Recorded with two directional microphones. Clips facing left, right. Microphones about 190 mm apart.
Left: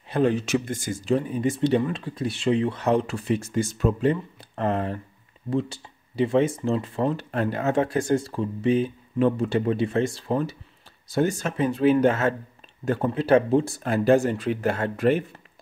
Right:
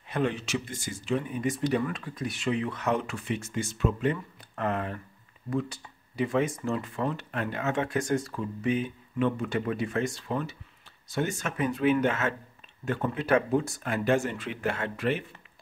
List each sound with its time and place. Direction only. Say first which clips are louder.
0.1 s speech: left 7 dB; 35° left (ahead or behind)